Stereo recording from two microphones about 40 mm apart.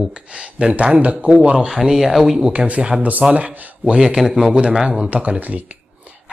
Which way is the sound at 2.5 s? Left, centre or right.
Right.